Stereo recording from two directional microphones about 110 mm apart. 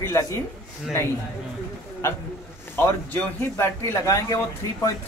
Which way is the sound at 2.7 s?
20° left (ahead or behind).